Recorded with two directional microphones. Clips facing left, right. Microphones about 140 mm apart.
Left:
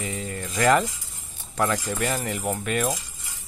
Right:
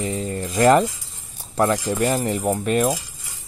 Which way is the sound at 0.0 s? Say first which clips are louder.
Right 6 dB; 35° right (ahead or behind).